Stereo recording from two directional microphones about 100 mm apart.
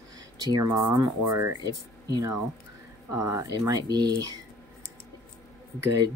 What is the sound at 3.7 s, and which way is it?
Speech, 45° right (ahead or behind).